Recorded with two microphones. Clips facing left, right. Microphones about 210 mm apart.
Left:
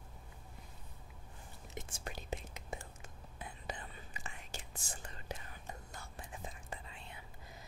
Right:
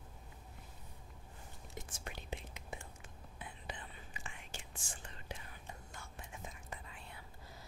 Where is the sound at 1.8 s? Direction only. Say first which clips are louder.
Left 3 dB; 30° left (ahead or behind).